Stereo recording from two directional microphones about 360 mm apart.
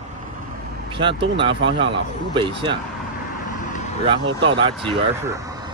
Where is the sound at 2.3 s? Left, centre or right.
Centre.